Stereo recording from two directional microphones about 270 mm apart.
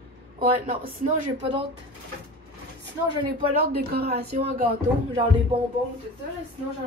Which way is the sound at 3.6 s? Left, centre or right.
Right.